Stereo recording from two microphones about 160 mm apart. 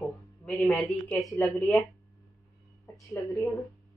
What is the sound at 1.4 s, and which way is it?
Speech, 15° left (ahead or behind).